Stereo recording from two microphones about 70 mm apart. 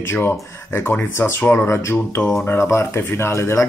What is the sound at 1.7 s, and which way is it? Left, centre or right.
Speech, left.